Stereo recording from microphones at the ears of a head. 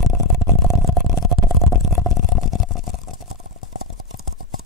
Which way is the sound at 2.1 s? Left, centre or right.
Left.